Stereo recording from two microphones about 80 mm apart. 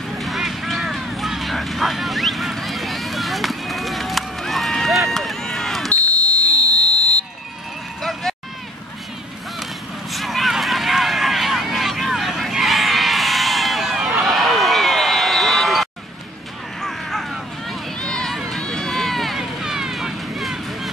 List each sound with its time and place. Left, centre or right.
0.2 s vehicle: centre
5.1 s run: centre
5.9 s smoke detector: centre
7.0 s vehicle: centre
8.0 s run: centre
10.1 s a sound: centre
16.8 s run: centre